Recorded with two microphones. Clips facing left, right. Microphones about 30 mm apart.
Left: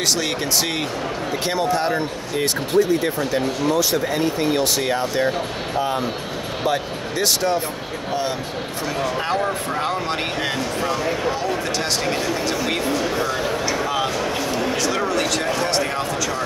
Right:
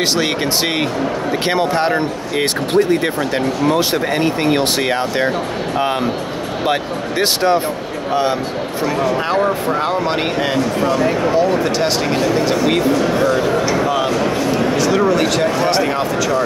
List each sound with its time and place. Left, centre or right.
1.5 s speech: right
2.3 s speech: right
6.6 s speech: right
8.1 s speech: right